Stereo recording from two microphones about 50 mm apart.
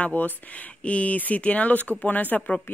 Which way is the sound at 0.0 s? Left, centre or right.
Left.